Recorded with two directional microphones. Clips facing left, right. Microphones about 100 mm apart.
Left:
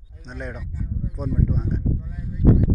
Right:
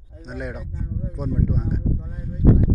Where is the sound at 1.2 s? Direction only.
Centre (ahead or behind).